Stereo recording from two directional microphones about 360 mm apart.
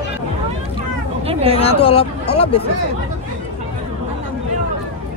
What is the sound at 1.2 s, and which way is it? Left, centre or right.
Speech, centre.